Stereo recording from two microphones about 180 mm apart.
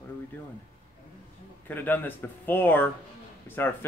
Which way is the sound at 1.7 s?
10° left (ahead or behind).